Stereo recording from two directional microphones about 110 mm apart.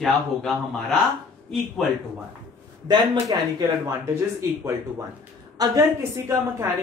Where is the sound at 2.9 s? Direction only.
40° right (ahead or behind).